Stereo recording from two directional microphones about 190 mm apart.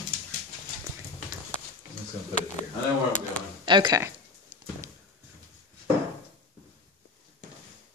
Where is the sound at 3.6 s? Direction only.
25° right (ahead or behind).